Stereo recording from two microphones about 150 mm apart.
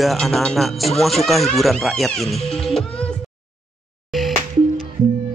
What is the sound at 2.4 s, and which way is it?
Music, centre (ahead or behind).